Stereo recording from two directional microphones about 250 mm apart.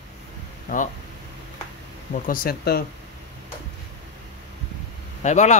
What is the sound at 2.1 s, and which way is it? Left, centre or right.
Speech, left.